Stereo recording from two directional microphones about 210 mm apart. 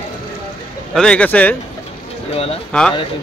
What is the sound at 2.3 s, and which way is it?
Speech, 30° left (ahead or behind).